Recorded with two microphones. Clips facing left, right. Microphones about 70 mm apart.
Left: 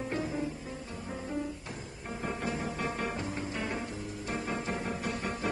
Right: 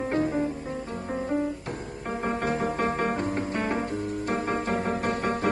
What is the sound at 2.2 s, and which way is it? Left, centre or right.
Music, right.